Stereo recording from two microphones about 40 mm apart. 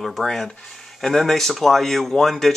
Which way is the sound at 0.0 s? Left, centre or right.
Centre.